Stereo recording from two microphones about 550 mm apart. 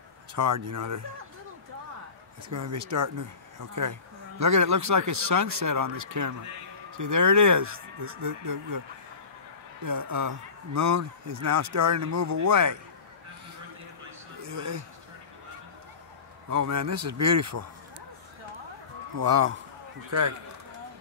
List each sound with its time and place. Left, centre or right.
0.4 s speech: right
2.5 s speech: right
9.8 s speech: right
14.4 s speech: right
16.4 s speech: right
19.1 s speech: right